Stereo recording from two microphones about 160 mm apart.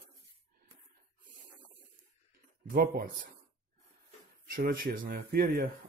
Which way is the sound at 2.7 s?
65° right (ahead or behind).